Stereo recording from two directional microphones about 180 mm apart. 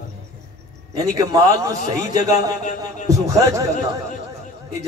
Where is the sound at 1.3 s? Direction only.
20° right (ahead or behind).